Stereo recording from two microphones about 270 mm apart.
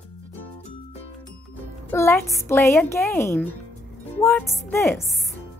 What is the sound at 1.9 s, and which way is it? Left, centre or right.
A woman's voice, centre.